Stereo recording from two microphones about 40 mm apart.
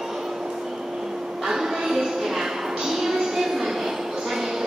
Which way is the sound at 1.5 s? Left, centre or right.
Centre.